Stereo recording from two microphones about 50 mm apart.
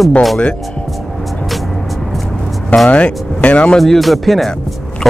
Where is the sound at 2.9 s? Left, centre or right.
Left.